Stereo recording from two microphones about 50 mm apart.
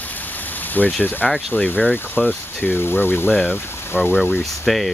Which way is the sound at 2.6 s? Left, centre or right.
Left.